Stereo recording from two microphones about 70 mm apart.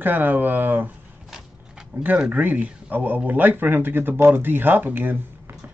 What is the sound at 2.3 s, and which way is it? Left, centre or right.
Speech, right.